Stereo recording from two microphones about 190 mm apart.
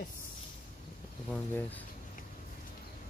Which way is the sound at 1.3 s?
10° left (ahead or behind).